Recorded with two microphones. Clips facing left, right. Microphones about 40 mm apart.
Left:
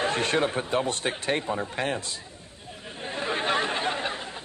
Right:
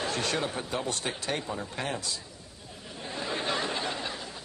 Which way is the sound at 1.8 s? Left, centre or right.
Left.